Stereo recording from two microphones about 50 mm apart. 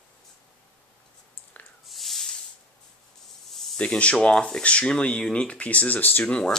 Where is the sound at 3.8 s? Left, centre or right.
Left.